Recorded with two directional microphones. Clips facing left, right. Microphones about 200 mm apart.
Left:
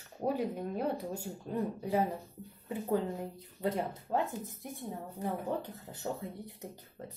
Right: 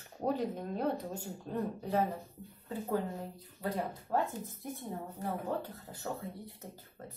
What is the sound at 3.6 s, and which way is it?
Speech, 20° left (ahead or behind).